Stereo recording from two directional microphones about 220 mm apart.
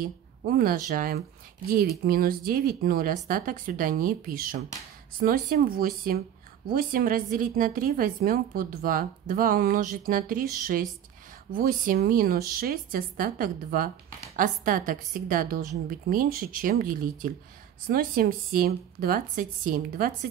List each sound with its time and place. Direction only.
0.0 s a woman's voice: 40° right (ahead or behind)